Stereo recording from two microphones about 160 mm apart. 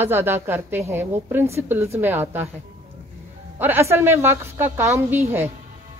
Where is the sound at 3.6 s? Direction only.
15° right (ahead or behind).